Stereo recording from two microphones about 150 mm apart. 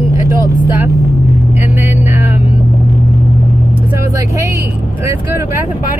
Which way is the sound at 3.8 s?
20° right (ahead or behind).